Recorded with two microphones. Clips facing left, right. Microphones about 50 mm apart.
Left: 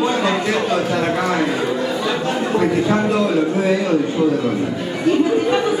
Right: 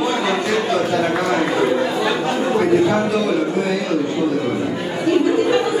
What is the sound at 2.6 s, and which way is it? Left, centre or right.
Speech, centre.